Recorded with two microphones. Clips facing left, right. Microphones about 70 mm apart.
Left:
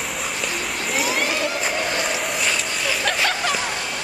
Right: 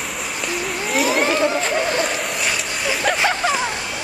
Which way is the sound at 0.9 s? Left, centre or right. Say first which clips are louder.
Right 5 dB; centre.